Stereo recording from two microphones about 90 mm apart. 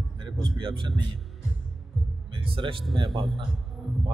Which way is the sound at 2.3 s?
70° right (ahead or behind).